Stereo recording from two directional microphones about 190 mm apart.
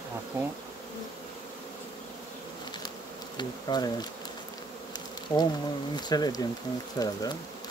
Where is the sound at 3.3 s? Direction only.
20° left (ahead or behind).